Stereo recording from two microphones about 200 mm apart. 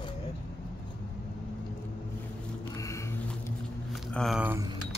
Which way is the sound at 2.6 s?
15° left (ahead or behind).